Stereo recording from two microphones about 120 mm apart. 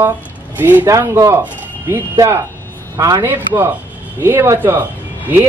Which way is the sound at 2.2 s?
25° right (ahead or behind).